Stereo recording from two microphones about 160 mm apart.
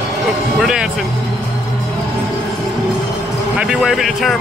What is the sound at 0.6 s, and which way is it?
Speech, 5° right (ahead or behind).